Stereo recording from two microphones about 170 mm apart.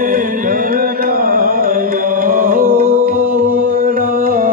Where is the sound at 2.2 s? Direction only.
55° right (ahead or behind).